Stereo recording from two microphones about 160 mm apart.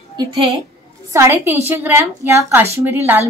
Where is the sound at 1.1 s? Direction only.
15° right (ahead or behind).